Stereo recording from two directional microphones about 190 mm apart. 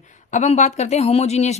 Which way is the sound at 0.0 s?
40° left (ahead or behind).